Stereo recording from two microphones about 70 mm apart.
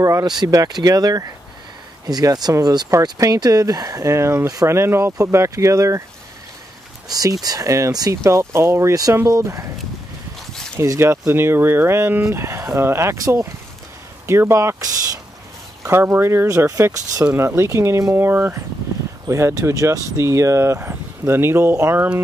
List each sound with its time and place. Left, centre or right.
0.0 s speech: right
0.3 s speech: right
2.6 s speech: right
2.9 s speech: right
7.1 s speech: right
8.1 s speech: right
9.3 s speech: right
10.8 s speech: right
14.5 s speech: right
15.9 s speech: right
16.4 s speech: right
17.3 s speech: right
18.1 s speech: right
19.2 s speech: right